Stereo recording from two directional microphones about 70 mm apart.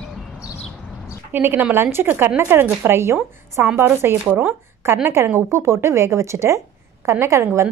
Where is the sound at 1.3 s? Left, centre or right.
Right.